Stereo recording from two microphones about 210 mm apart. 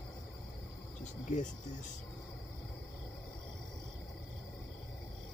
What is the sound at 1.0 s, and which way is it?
Speech, 35° left (ahead or behind).